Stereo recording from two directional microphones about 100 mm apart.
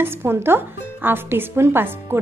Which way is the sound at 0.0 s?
20° right (ahead or behind).